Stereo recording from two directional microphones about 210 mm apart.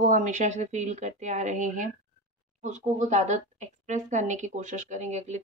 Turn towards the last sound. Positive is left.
turn(degrees=-35)  # may be behind; listen again after turning